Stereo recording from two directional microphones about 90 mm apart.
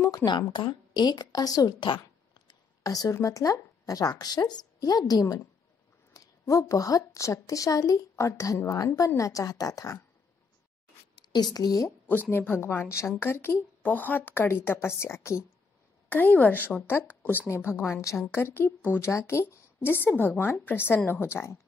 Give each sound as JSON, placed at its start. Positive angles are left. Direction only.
{"t": 0.2, "sound": "a woman's voice", "side_deg": 60}
{"t": 2.8, "sound": "a woman's voice", "side_deg": 40}
{"t": 11.1, "sound": "speech", "side_deg": 50}
{"t": 12.3, "sound": "a woman's voice", "side_deg": 25}
{"t": 16.1, "sound": "a woman's voice", "side_deg": 20}